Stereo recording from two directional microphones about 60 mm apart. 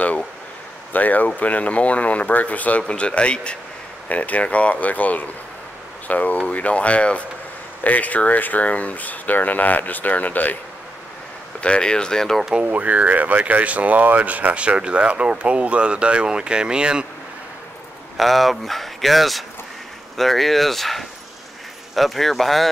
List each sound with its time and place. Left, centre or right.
0.9 s speech: left
11.6 s speech: centre
12.6 s speech: right
18.1 s speech: centre